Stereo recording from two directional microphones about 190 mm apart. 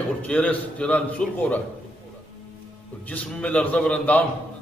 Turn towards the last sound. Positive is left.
turn(degrees=5)  # may be behind; listen again after turning